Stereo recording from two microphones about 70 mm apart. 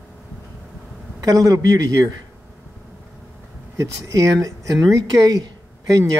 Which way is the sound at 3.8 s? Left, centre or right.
Right.